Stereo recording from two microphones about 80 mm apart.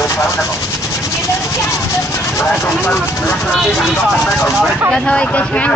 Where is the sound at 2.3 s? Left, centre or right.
Left.